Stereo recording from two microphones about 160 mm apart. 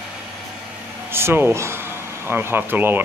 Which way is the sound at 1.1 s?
15° right (ahead or behind).